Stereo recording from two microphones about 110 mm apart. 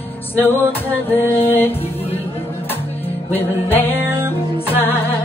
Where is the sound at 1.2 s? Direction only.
20° left (ahead or behind).